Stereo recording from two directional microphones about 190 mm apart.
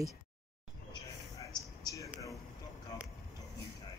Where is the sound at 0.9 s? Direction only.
20° left (ahead or behind).